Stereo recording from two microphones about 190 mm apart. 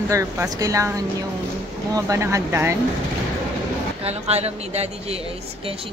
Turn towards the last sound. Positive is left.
turn(degrees=-35)  # may be behind; listen again after turning